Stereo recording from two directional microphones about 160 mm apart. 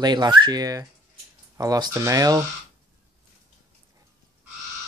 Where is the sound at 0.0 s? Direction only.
25° right (ahead or behind).